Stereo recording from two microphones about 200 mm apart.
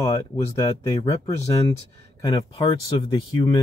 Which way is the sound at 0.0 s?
20° left (ahead or behind).